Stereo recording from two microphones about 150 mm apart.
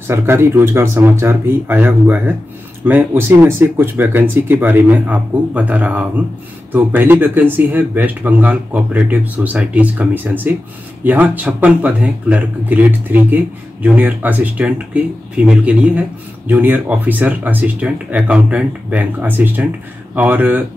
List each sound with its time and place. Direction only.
0.0 s speech: 15° right (ahead or behind)